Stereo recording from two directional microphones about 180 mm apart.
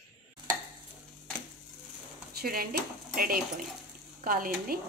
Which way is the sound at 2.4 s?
55° right (ahead or behind).